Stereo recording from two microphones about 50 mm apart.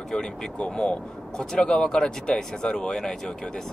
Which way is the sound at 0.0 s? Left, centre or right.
Centre.